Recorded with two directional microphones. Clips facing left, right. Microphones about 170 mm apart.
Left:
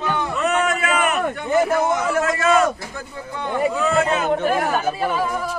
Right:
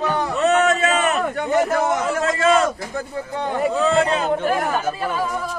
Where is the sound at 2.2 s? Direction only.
30° right (ahead or behind).